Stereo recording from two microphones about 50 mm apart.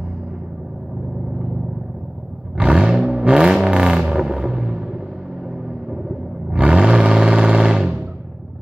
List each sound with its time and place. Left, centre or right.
2.5 s vehicle: centre